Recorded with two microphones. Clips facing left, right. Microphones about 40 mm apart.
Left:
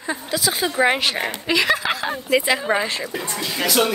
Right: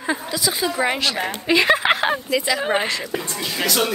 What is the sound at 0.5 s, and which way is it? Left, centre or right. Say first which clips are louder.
Speech: left 2 dB; centre.